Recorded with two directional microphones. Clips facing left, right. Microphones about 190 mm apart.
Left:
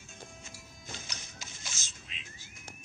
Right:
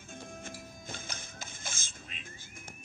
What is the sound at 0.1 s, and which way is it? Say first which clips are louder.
Music: right 7 dB; 55° right (ahead or behind).